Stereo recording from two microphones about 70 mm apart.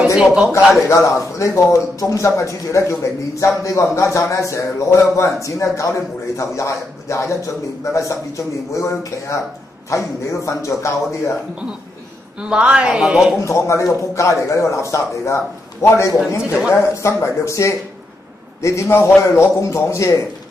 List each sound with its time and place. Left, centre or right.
0.0 s speech: centre
0.8 s a man's voice: left
12.4 s a woman's voice: centre
13.0 s speech: centre
13.4 s a man's voice: left